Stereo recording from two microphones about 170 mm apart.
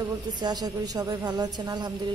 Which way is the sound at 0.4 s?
25° right (ahead or behind).